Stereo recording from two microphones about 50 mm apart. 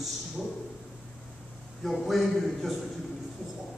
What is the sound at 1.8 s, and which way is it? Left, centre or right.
Speech, centre.